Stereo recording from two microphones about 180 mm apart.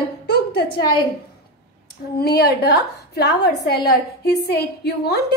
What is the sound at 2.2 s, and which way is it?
A woman's voice, 60° left (ahead or behind).